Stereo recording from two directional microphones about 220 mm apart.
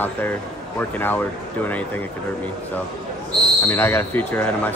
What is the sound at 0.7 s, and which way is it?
Speech, 10° left (ahead or behind).